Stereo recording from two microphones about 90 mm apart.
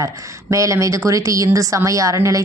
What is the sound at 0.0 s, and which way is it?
A woman's voice, 35° right (ahead or behind).